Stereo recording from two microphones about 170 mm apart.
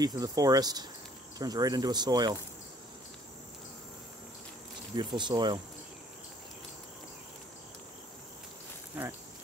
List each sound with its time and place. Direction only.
0.0 s speech: 20° right (ahead or behind)
4.9 s speech: 25° right (ahead or behind)